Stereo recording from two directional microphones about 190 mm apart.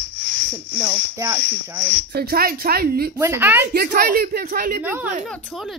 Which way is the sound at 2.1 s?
55° right (ahead or behind).